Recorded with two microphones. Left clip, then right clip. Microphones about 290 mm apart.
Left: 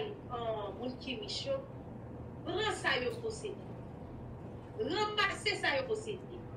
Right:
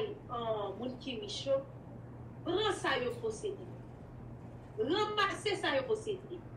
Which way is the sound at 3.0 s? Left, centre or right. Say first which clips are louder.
Right 1 dB; right.